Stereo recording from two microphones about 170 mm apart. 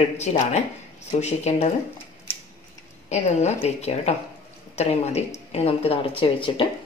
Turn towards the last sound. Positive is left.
turn(degrees=30)  # may be behind; listen again after turning